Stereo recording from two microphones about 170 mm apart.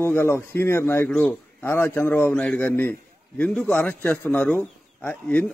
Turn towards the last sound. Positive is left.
turn(degrees=10)  # may be behind; listen again after turning